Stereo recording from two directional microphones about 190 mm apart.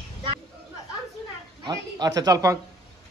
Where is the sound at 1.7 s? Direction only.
20° right (ahead or behind).